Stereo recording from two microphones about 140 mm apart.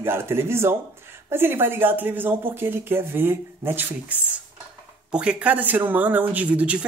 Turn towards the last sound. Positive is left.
turn(degrees=-10)  # may be behind; listen again after turning